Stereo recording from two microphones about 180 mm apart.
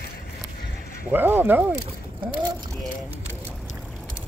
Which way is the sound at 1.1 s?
10° right (ahead or behind).